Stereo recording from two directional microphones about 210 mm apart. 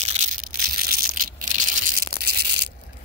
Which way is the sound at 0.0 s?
35° right (ahead or behind).